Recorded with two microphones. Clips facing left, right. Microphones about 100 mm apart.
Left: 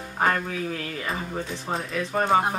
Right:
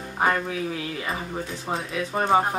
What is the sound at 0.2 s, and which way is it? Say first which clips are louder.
Speech: right 1 dB; 10° right (ahead or behind).